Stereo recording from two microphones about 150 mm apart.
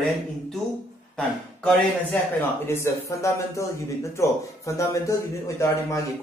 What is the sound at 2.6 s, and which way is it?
Speech, 15° left (ahead or behind).